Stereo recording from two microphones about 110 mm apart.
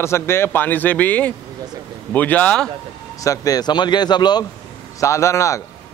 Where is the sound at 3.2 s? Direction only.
30° left (ahead or behind).